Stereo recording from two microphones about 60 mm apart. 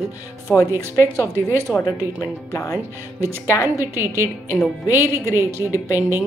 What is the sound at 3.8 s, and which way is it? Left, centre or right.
A woman's voice, right.